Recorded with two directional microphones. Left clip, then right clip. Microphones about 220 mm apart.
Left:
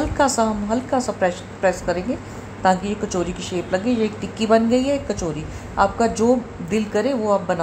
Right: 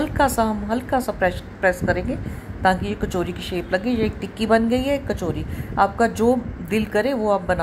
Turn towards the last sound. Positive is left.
turn(degrees=-15)  # may be behind; listen again after turning